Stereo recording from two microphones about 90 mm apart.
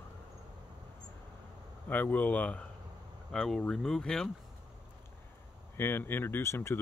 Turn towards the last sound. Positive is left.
turn(degrees=30)  # may be behind; listen again after turning